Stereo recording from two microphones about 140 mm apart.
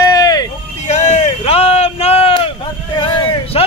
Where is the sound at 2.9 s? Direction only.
35° left (ahead or behind).